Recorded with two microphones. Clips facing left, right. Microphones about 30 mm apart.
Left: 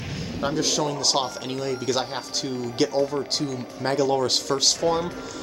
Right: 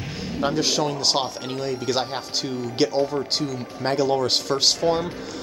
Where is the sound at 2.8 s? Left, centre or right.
Right.